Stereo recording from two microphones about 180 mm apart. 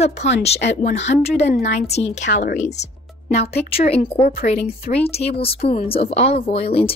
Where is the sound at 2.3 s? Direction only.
55° left (ahead or behind).